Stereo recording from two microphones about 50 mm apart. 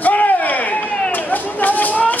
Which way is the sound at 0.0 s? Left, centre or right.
Left.